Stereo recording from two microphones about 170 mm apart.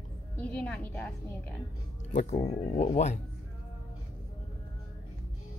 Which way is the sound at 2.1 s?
40° left (ahead or behind).